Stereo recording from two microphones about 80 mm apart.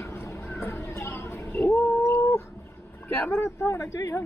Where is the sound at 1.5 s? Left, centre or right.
Left.